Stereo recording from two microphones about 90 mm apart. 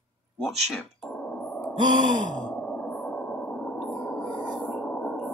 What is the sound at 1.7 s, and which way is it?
Gasp, 55° right (ahead or behind).